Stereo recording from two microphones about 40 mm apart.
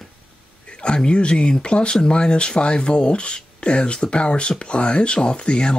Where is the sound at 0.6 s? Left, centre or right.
Left.